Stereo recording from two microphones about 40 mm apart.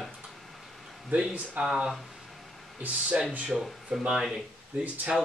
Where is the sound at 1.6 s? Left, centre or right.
Centre.